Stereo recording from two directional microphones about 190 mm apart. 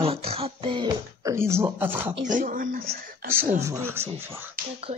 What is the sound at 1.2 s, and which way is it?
Speech, 15° right (ahead or behind).